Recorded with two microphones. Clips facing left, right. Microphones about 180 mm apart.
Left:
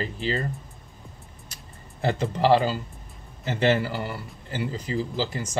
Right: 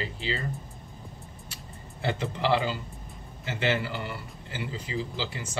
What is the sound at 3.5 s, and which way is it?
Speech, 40° left (ahead or behind).